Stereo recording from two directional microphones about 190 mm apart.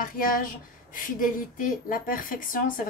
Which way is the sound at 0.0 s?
50° left (ahead or behind).